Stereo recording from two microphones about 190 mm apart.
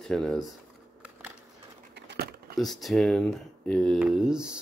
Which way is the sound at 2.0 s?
60° right (ahead or behind).